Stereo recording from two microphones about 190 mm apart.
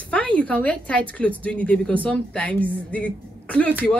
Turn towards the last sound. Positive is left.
turn(degrees=5)  # may be behind; listen again after turning